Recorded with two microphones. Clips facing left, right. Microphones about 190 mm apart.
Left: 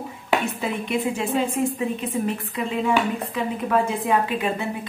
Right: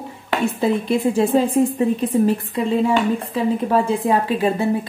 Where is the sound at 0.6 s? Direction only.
35° right (ahead or behind).